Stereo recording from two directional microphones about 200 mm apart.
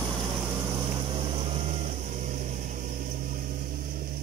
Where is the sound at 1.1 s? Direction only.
25° right (ahead or behind).